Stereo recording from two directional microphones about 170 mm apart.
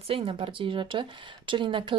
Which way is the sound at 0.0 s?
35° right (ahead or behind).